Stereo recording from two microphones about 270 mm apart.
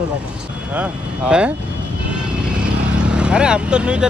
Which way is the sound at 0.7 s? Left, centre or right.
Centre.